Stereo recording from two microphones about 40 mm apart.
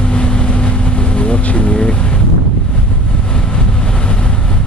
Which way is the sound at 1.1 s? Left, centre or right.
Left.